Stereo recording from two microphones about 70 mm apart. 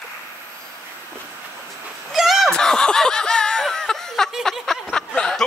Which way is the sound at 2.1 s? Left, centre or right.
Centre.